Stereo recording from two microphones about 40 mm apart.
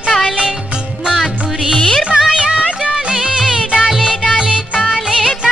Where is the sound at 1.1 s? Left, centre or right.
Centre.